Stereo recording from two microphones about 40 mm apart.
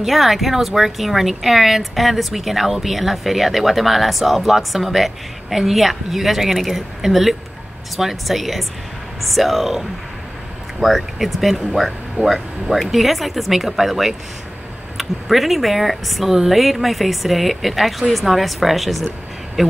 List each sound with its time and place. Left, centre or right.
0.0 s speech: centre